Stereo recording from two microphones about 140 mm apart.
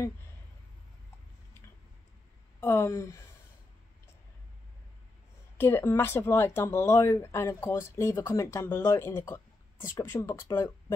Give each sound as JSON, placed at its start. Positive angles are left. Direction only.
{"t": 2.6, "sound": "speech", "side_deg": 15}
{"t": 5.6, "sound": "speech", "side_deg": 15}